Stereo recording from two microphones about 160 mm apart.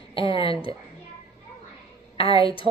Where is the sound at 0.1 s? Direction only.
35° left (ahead or behind).